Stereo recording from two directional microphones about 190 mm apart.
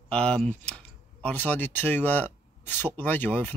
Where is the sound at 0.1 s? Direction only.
5° left (ahead or behind).